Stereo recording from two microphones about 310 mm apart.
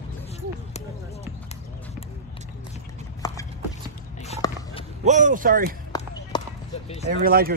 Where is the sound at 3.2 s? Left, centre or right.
Centre.